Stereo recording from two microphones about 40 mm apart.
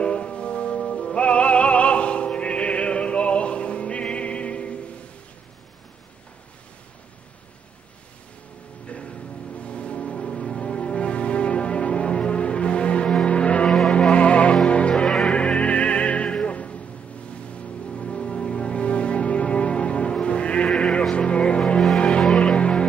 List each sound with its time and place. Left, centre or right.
0.0 s music: left
8.8 s music: left
13.7 s music: centre
14.1 s music: left
17.9 s music: left